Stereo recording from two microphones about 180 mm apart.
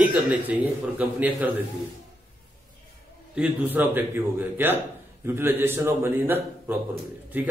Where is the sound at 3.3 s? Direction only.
5° right (ahead or behind).